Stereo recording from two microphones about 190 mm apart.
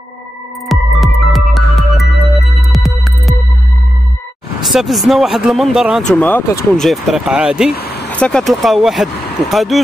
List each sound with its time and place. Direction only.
0.7 s music: centre (ahead or behind)
4.6 s speech: centre (ahead or behind)
6.8 s speech: centre (ahead or behind)
7.7 s vehicle: 55° left (ahead or behind)
8.1 s speech: 5° left (ahead or behind)